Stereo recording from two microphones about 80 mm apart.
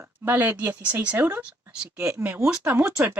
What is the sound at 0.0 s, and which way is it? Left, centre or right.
Speech, right.